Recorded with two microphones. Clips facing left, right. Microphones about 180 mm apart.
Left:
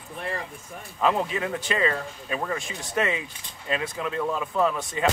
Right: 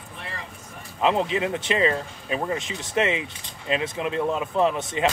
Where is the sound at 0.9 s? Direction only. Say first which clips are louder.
Right 2 dB; 25° right (ahead or behind).